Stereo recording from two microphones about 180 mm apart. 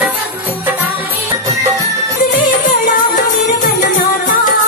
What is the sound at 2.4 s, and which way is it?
Music, 45° left (ahead or behind).